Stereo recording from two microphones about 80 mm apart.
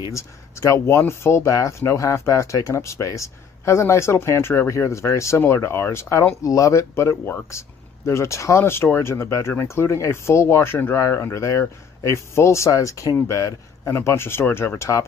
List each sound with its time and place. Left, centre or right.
0.1 s speech: left
13.8 s speech: left